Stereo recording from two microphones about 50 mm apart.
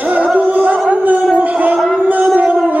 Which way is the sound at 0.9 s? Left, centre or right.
Right.